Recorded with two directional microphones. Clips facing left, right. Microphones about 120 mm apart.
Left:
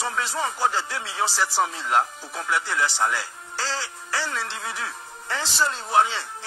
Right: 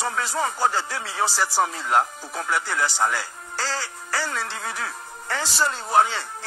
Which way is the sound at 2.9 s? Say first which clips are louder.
Right 1 dB; 25° right (ahead or behind).